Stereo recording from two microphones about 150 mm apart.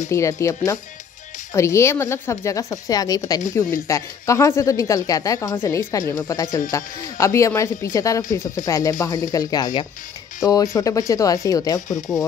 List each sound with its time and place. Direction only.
0.1 s speech: 20° left (ahead or behind)